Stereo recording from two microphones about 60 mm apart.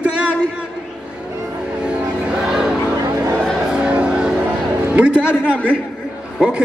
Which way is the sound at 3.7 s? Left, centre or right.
Centre.